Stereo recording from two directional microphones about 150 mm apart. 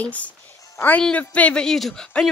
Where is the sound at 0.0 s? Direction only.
10° left (ahead or behind).